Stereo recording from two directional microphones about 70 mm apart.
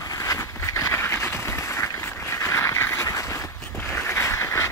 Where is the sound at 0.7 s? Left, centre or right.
Left.